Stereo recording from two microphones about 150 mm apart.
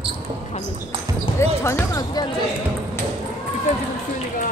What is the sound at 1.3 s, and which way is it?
Basketball bounce, 20° left (ahead or behind).